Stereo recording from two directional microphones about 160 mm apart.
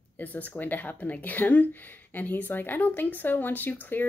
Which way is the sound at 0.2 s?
10° left (ahead or behind).